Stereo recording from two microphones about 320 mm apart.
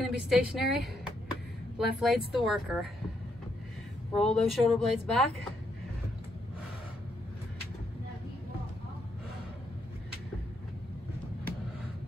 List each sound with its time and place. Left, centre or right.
0.0 s a sound: centre
2.0 s speech: centre
4.1 s speech: centre